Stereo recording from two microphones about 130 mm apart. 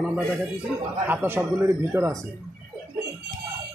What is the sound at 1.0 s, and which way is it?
Speech, 15° right (ahead or behind).